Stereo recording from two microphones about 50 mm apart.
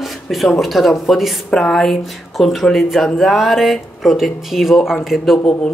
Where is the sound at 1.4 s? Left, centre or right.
Centre.